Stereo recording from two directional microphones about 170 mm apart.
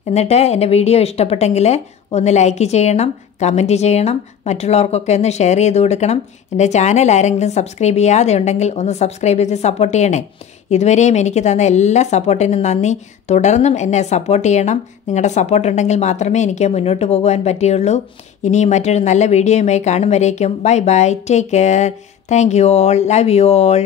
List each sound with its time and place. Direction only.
0.1 s speech: 40° left (ahead or behind)